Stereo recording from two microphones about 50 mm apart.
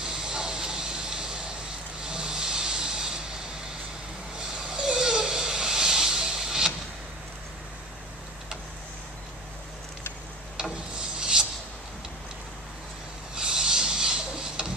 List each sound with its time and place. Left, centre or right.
0.0 s a sound: centre
2.0 s vehicle: centre
4.7 s hiss: centre
10.6 s rub: centre
13.3 s wood: centre